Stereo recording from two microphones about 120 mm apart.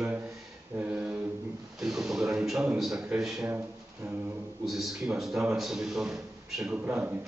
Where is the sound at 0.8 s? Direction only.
10° right (ahead or behind).